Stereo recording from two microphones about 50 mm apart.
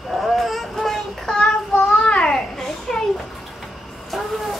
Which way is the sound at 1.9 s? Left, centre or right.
Centre.